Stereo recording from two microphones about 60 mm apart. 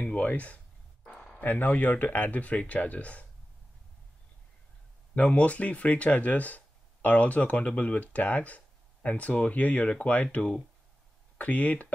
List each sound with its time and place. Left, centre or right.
0.1 s speech: left
1.1 s a sound: centre
1.4 s speech: left
5.1 s speech: left